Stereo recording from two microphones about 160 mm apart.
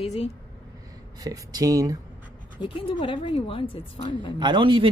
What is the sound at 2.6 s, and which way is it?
A woman's voice, 35° left (ahead or behind).